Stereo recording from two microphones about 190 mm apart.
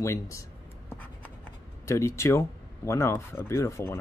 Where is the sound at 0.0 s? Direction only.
15° left (ahead or behind).